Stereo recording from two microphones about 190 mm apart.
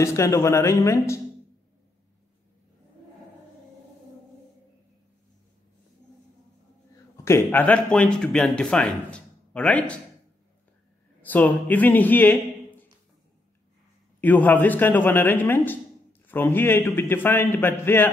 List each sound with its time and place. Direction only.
0.0 s a man's voice: 15° left (ahead or behind)
7.2 s speech: 10° left (ahead or behind)
11.2 s speech: 10° left (ahead or behind)
14.2 s a man's voice: 10° left (ahead or behind)